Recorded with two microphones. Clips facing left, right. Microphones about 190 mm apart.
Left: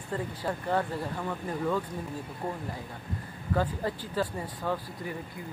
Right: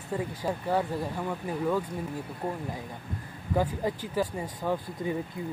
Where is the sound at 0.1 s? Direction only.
10° right (ahead or behind).